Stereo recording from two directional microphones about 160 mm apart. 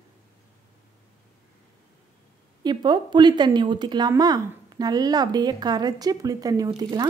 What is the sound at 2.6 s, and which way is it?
Speech, 30° right (ahead or behind).